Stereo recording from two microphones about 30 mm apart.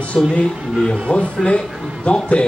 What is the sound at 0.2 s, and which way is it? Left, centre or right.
A man's voice, left.